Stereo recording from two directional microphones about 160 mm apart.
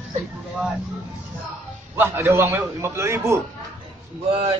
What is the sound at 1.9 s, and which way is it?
A man's voice, 15° right (ahead or behind).